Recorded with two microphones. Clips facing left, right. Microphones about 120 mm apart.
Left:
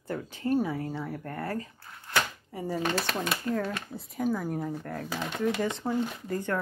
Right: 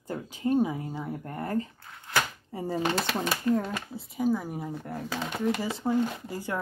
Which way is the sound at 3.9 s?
5° right (ahead or behind).